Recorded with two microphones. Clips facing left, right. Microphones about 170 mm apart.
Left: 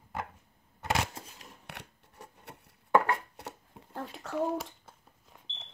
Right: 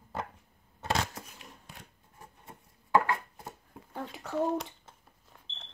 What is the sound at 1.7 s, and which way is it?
Scissors, 70° left (ahead or behind).